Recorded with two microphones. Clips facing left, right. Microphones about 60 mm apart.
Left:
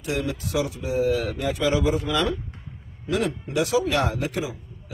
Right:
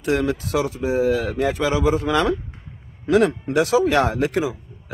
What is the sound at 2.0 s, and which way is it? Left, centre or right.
Speech, right.